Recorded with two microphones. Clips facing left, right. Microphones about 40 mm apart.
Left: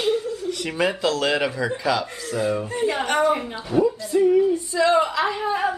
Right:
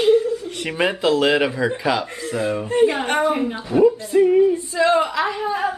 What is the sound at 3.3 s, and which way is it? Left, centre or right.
Speech, centre.